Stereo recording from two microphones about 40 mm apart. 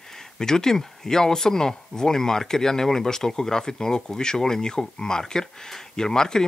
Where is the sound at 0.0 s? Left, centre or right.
Centre.